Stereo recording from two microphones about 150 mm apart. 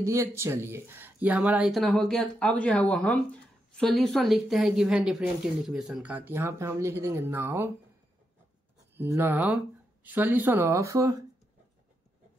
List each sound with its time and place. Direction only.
0.0 s speech: 20° right (ahead or behind)
8.9 s speech: 15° right (ahead or behind)